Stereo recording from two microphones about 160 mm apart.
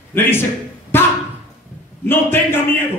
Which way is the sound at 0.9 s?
15° left (ahead or behind).